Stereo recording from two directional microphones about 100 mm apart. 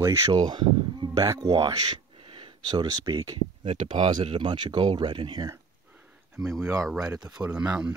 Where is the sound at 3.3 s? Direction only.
60° right (ahead or behind).